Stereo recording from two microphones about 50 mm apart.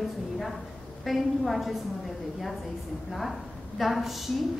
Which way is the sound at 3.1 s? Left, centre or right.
Centre.